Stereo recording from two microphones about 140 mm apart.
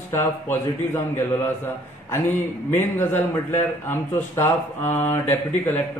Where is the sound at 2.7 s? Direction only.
15° left (ahead or behind).